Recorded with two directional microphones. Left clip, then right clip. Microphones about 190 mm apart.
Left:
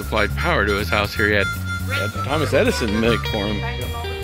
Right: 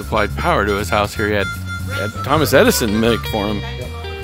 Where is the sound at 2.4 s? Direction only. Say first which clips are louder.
Right 6 dB; 30° right (ahead or behind).